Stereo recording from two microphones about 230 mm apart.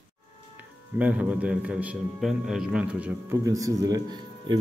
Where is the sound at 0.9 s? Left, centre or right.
Centre.